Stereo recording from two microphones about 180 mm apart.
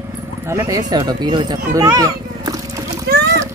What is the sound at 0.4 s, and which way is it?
Speech, 15° right (ahead or behind).